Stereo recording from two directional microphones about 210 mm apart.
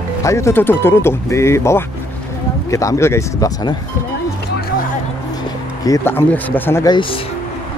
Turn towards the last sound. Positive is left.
turn(degrees=20)  # may be behind; listen again after turning